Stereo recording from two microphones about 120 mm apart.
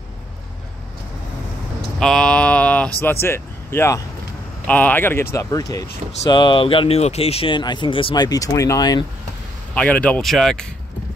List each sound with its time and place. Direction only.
2.0 s speech: 5° left (ahead or behind); by 5.9 s 30° left (ahead or behind)
6.3 s speech: 45° left (ahead or behind)
8.3 s speech: 30° left (ahead or behind)
9.8 s speech: 10° left (ahead or behind)